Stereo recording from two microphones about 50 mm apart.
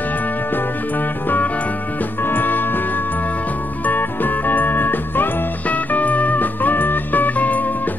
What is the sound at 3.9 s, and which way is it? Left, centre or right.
Music, left.